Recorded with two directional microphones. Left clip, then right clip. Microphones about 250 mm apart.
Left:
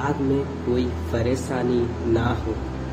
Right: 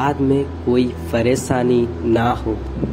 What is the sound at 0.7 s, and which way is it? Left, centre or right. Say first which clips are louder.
Speech: right 7 dB; right.